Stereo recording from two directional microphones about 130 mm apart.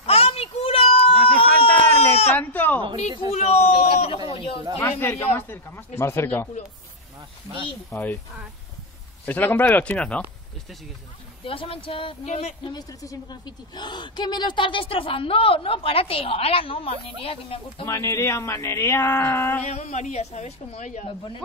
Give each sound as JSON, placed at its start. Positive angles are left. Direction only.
{"t": 0.0, "sound": "a sound", "side_deg": 50}
{"t": 2.3, "sound": "speech", "side_deg": 15}
{"t": 3.3, "sound": "a woman's voice", "side_deg": 55}
{"t": 3.7, "sound": "a sound", "side_deg": 45}
{"t": 4.3, "sound": "a woman's voice", "side_deg": 45}
{"t": 4.7, "sound": "speech", "side_deg": 15}
{"t": 7.9, "sound": "speech", "side_deg": 15}
{"t": 9.2, "sound": "speech", "side_deg": 15}
{"t": 11.4, "sound": "a woman's voice", "side_deg": 45}
{"t": 12.3, "sound": "a woman's voice", "side_deg": 55}
{"t": 12.6, "sound": "a woman's voice", "side_deg": 30}
{"t": 17.8, "sound": "a sound", "side_deg": 25}
{"t": 19.6, "sound": "a woman's voice", "side_deg": 60}